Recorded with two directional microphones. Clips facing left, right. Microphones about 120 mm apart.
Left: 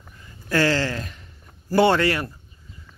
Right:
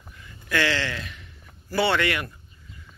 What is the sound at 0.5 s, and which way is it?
Speech, 40° left (ahead or behind).